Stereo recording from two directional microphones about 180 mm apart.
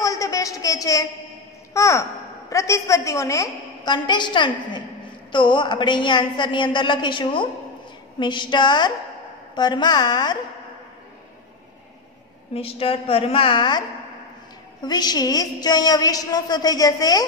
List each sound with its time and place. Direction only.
0.0 s a sound: 20° left (ahead or behind)
1.7 s a child's voice: 15° left (ahead or behind)
12.5 s a woman's voice: 30° left (ahead or behind)